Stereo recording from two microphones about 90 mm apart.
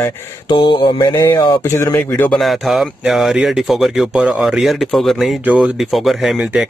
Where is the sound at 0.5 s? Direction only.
65° left (ahead or behind).